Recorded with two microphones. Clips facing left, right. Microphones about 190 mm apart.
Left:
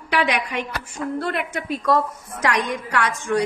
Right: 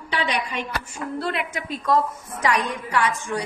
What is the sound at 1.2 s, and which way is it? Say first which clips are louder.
Speech: left 2 dB; 55° left (ahead or behind).